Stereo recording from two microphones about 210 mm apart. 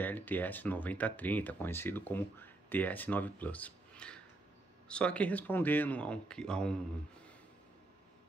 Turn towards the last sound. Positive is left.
turn(degrees=5)  # may be behind; listen again after turning